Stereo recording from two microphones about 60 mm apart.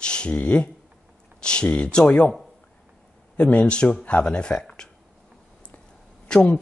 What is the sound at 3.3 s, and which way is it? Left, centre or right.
Speech, left.